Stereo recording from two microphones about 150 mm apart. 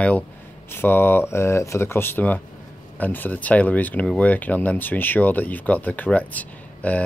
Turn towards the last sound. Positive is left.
turn(degrees=10)  # may be behind; listen again after turning